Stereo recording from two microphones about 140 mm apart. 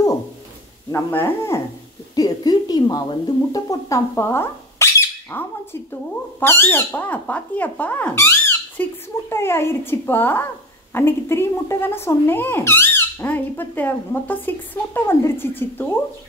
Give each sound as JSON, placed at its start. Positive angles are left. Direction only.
{"t": 0.9, "sound": "a woman's voice", "side_deg": 20}